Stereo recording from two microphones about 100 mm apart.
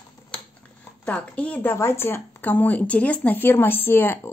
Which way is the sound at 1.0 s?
15° left (ahead or behind).